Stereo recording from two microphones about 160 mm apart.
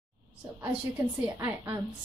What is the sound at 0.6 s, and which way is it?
A woman's voice, 10° right (ahead or behind).